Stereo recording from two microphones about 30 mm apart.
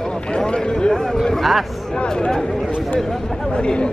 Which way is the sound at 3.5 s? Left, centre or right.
Left.